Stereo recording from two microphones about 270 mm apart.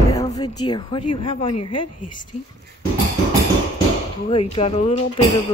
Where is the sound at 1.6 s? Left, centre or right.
Left.